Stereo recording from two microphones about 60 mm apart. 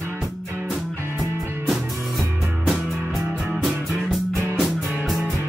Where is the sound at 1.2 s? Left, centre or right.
Centre.